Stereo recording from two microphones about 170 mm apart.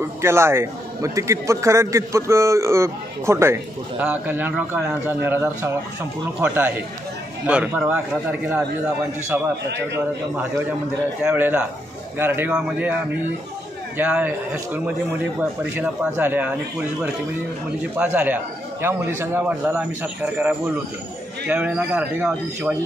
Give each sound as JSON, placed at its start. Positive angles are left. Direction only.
{"t": 0.0, "sound": "a man's voice", "side_deg": -15}
{"t": 11.2, "sound": "a man's voice", "side_deg": -10}
{"t": 13.9, "sound": "a man's voice", "side_deg": -10}
{"t": 17.9, "sound": "a man's voice", "side_deg": -10}